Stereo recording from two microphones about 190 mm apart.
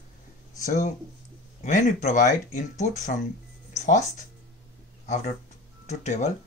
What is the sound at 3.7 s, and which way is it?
Music, 40° left (ahead or behind).